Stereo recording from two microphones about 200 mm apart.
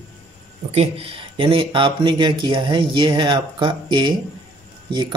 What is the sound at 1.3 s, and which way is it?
Speech, 25° right (ahead or behind).